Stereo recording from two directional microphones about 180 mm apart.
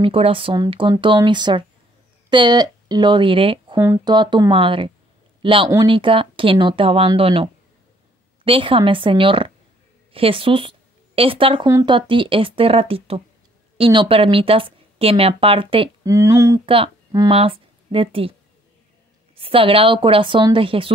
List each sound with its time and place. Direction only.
0.0 s speech: 30° right (ahead or behind)
3.8 s speech: 15° right (ahead or behind)
4.1 s speech: 25° right (ahead or behind)
8.5 s speech: 30° right (ahead or behind)
16.1 s speech: 15° right (ahead or behind)
16.6 s speech: 30° right (ahead or behind)
19.3 s speech: 30° right (ahead or behind)